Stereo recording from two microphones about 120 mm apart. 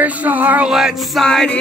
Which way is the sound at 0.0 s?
15° right (ahead or behind).